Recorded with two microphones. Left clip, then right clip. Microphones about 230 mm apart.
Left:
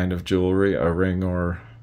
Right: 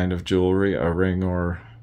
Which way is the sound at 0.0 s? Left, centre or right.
Centre.